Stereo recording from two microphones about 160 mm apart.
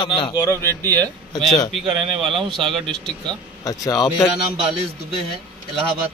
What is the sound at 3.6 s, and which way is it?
Speech, 20° left (ahead or behind).